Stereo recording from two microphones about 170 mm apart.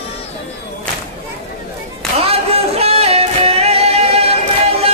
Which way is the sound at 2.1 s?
35° right (ahead or behind).